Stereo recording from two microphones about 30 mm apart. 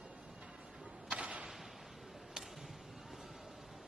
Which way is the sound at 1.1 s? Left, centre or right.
Right.